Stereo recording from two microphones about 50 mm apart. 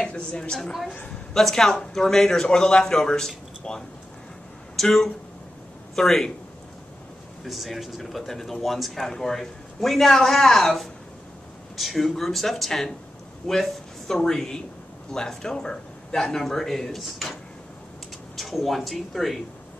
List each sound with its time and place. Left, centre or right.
0.0 s a woman's voice: centre
0.6 s a man's voice: centre
5.9 s speech: centre
7.4 s speech: centre